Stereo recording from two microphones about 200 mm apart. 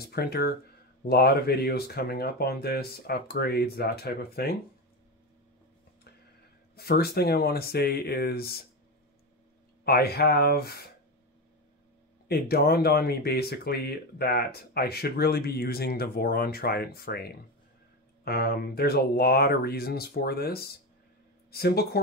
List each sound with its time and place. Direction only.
0.1 s speech: 50° left (ahead or behind)
6.7 s speech: 50° left (ahead or behind)
9.8 s speech: 50° left (ahead or behind)
12.3 s speech: 50° left (ahead or behind)